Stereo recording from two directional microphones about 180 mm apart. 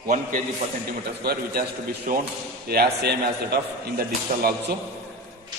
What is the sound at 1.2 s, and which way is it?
A man's voice, 60° right (ahead or behind).